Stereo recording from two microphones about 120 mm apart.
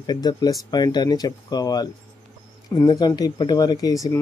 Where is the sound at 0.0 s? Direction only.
35° left (ahead or behind).